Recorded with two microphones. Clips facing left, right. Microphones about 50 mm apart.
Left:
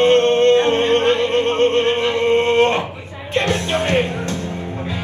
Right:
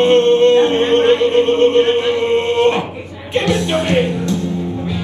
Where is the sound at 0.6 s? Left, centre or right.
Right.